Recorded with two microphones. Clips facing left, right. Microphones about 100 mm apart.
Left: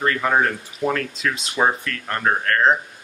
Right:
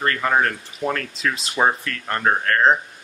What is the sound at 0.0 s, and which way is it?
Speech, 5° left (ahead or behind).